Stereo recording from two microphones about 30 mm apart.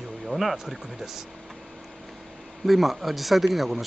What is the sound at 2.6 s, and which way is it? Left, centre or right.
Speech, centre.